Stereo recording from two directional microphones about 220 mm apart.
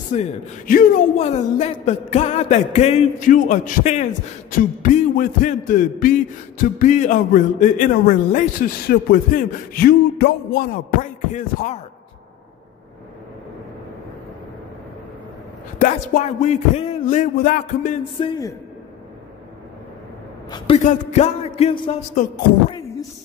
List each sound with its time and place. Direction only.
0.1 s a man's voice: 35° left (ahead or behind)
15.8 s a man's voice: 35° left (ahead or behind)
18.2 s music: 20° left (ahead or behind)
20.5 s music: 20° left (ahead or behind)
20.8 s music: 35° left (ahead or behind)
22.2 s a man's voice: 35° left (ahead or behind)
22.7 s a sound: 15° left (ahead or behind)